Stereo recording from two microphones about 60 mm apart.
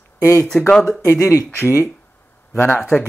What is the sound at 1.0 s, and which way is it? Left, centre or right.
Speech, left.